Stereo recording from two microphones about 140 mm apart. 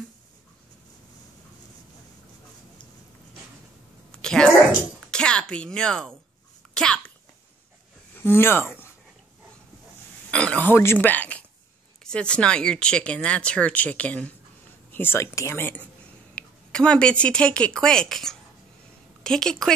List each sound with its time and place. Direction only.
4.1 s a sound: 5° left (ahead or behind)
5.1 s speech: 5° left (ahead or behind)
6.7 s sneeze: 5° left (ahead or behind)
8.2 s speech: 15° left (ahead or behind)
10.3 s a woman's voice: 10° left (ahead or behind)